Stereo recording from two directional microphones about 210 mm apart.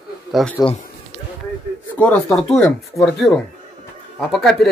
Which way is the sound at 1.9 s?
5° left (ahead or behind).